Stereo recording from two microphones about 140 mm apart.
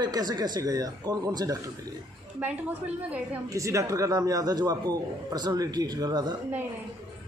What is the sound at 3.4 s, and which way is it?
A man's voice, 20° right (ahead or behind).